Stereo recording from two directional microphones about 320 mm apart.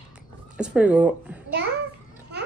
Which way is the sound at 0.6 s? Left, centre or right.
Centre.